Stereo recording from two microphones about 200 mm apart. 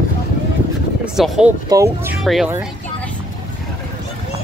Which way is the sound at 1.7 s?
15° right (ahead or behind).